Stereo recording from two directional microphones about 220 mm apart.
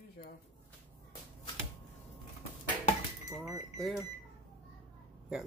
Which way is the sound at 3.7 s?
Centre (ahead or behind).